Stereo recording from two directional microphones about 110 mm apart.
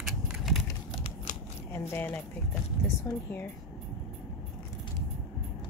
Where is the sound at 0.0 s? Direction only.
Centre (ahead or behind).